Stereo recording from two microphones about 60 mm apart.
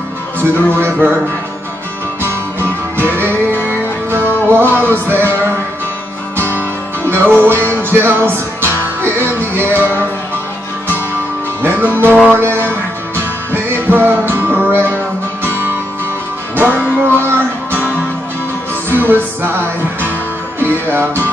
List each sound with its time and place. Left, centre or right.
0.4 s speech: right
2.2 s music: right
11.6 s music: right
16.5 s music: right
18.9 s music: right